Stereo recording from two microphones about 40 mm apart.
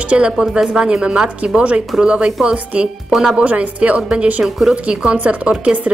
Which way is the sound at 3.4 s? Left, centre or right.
Right.